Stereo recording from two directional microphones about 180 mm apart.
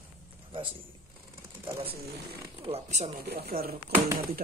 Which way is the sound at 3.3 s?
60° right (ahead or behind).